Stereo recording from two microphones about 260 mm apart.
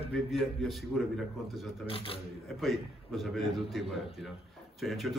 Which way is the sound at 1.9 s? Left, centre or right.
Left.